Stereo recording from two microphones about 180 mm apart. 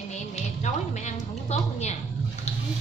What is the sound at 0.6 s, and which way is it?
A woman's voice, 40° left (ahead or behind).